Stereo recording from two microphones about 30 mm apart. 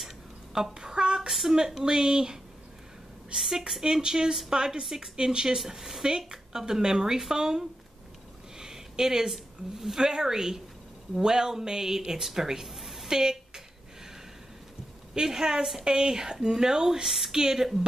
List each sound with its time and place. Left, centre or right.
0.7 s a sound: right
1.9 s speech: right
3.3 s speech: centre
3.8 s speech: right
4.8 s speech: centre
5.1 s speech: right
5.7 s a woman's voice: centre
6.0 s speech: right
12.7 s a sound: centre
13.1 s speech: right
15.2 s speech: centre